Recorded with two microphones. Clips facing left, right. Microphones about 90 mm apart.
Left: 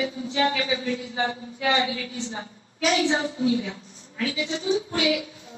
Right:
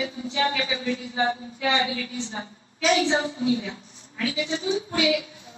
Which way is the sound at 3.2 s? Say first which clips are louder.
Left 1 dB; 40° left (ahead or behind).